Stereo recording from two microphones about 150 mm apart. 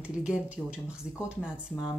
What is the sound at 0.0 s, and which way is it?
Speech, 5° right (ahead or behind).